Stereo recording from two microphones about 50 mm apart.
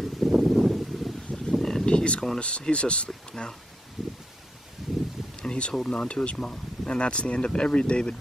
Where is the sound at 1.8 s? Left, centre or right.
Left.